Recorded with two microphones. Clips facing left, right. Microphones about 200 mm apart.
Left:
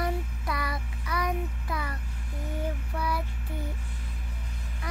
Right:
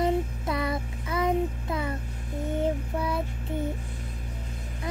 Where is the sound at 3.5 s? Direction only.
25° right (ahead or behind).